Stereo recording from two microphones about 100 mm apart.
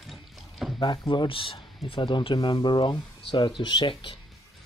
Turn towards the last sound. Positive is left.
turn(degrees=60)  # may be behind; listen again after turning